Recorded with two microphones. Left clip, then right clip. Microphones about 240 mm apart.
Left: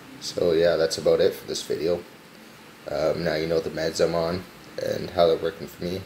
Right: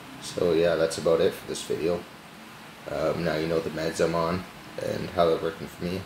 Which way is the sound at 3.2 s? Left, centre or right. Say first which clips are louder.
Left 2 dB; centre.